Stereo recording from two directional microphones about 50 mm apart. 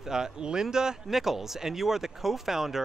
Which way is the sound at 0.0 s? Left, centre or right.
Centre.